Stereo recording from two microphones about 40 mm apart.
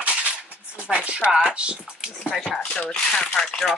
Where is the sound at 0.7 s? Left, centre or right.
Right.